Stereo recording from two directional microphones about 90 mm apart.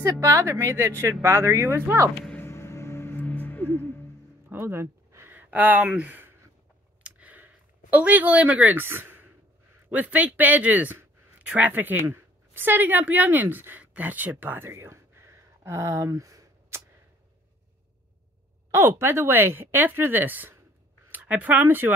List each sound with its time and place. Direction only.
0.0 s a woman's voice: 35° right (ahead or behind)
2.3 s music: 25° left (ahead or behind)
4.5 s a sound: 25° right (ahead or behind)
5.3 s speech: 20° right (ahead or behind)
7.0 s a sound: 15° right (ahead or behind)
9.8 s speech: 15° right (ahead or behind); by 16.8 s 40° right (ahead or behind)
18.7 s speech: 30° right (ahead or behind)